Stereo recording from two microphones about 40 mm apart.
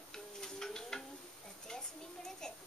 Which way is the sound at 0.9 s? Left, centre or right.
Centre.